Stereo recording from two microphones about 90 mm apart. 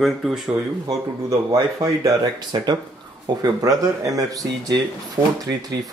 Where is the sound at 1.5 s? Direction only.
45° right (ahead or behind).